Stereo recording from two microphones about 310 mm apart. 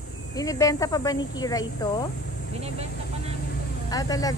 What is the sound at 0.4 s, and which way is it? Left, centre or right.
Speech, centre.